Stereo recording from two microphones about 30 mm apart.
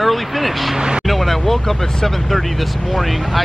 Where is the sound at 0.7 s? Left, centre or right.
Right.